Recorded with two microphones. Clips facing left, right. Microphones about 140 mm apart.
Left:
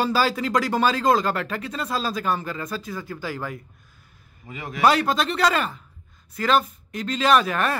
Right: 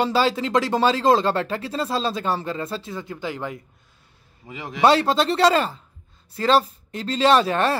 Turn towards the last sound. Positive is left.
turn(degrees=-30)  # may be behind; listen again after turning